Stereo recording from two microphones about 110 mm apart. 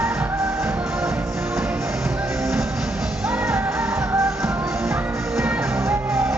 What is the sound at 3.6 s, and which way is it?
Music, 25° right (ahead or behind).